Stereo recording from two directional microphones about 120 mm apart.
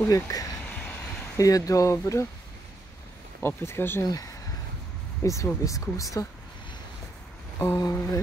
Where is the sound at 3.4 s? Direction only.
20° left (ahead or behind).